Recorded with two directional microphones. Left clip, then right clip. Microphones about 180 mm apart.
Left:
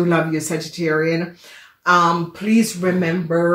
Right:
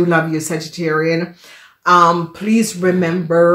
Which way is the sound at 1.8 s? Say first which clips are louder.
Right 4 dB; 45° right (ahead or behind).